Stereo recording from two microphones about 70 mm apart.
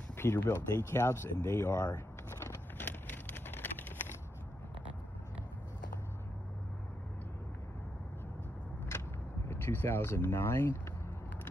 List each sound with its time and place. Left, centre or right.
0.1 s speech: left
2.4 s vehicle: left
9.5 s speech: left